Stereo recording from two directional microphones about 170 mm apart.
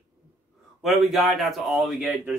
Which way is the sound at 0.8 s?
Centre (ahead or behind).